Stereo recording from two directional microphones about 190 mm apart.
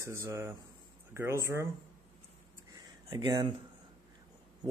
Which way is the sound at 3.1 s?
20° right (ahead or behind).